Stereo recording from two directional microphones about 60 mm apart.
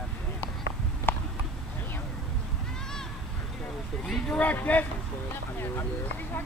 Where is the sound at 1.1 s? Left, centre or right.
Left.